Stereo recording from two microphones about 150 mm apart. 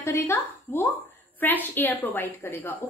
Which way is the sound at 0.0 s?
20° left (ahead or behind).